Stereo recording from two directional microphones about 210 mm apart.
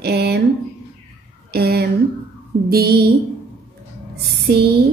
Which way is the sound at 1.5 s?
50° right (ahead or behind).